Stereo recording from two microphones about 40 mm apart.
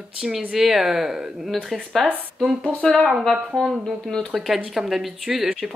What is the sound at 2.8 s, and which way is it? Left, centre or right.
Speech, centre.